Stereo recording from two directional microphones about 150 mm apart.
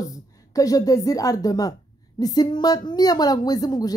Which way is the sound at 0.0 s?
25° left (ahead or behind).